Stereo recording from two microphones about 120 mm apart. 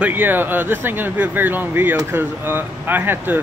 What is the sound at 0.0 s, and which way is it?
Speech, 15° right (ahead or behind).